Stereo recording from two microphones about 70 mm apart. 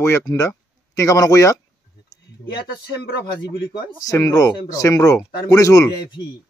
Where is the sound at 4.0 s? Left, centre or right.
Left.